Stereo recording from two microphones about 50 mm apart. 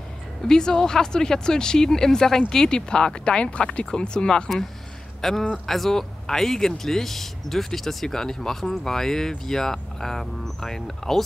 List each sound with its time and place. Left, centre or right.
0.5 s speech: centre
5.2 s speech: centre